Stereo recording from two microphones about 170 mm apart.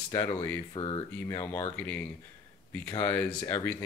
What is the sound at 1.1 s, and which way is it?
Speech, 10° left (ahead or behind).